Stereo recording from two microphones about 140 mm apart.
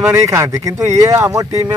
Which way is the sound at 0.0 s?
20° right (ahead or behind).